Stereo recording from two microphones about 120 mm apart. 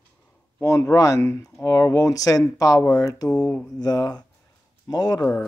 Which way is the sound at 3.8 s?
35° left (ahead or behind).